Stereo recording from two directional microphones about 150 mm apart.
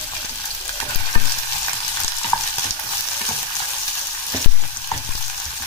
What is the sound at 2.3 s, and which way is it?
Stir, 25° left (ahead or behind).